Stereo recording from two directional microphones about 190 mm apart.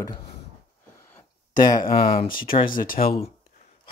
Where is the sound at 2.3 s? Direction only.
50° left (ahead or behind).